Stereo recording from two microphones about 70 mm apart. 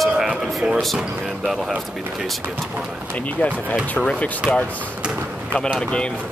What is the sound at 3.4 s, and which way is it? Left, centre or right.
Speech, left.